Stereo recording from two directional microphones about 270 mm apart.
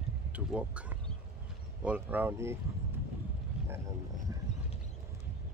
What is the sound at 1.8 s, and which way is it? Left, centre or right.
Speech, centre.